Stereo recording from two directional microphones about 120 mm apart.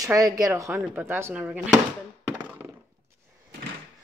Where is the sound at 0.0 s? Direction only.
30° right (ahead or behind); by 1.6 s 10° right (ahead or behind).